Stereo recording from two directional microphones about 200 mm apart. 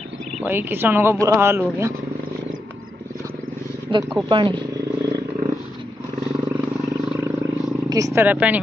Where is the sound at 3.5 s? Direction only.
90° right.